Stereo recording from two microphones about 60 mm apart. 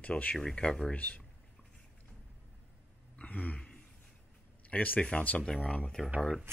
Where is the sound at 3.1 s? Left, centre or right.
Left.